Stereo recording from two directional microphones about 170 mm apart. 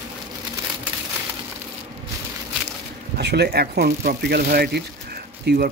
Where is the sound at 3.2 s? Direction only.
75° right (ahead or behind).